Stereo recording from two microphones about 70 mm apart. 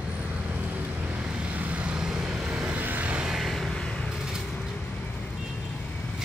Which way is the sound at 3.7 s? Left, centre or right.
Centre.